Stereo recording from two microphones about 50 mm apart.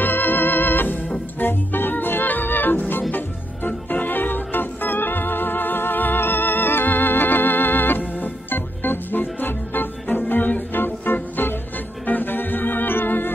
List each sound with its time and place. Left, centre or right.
0.0 s organ: left
1.4 s music: left
3.6 s organ: left
8.2 s music: left
10.0 s organ: left
12.1 s music: left